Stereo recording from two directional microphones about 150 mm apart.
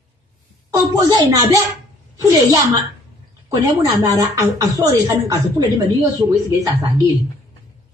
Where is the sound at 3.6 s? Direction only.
20° right (ahead or behind).